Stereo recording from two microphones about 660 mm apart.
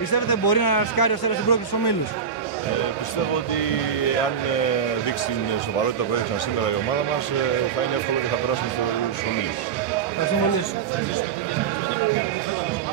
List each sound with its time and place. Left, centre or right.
0.1 s a man's voice: left